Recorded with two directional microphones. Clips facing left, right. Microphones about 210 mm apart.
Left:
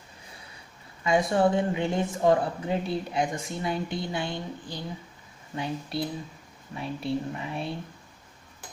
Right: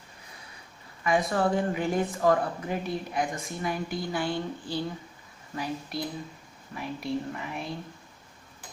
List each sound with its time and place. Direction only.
1.0 s speech: 25° left (ahead or behind)